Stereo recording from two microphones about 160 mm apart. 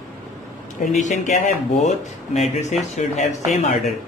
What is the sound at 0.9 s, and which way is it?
Speech, 50° left (ahead or behind).